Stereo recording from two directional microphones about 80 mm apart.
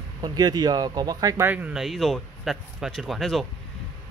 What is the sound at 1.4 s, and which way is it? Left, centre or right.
Speech, right.